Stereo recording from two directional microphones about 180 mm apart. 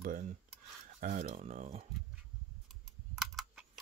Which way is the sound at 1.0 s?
45° right (ahead or behind).